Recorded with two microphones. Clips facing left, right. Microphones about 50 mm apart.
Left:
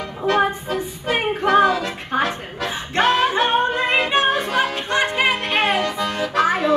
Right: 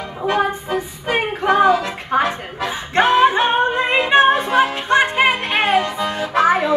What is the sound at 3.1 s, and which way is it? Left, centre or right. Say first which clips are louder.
Yodeling: right 3 dB; centre.